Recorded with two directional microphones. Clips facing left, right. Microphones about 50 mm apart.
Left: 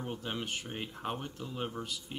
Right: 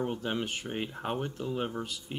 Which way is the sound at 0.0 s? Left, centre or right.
Centre.